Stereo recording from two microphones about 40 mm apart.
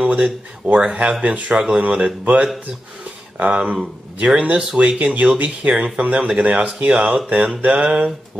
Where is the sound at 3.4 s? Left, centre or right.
Right.